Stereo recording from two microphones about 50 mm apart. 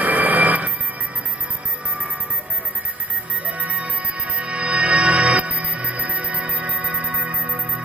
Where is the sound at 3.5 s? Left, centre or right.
Right.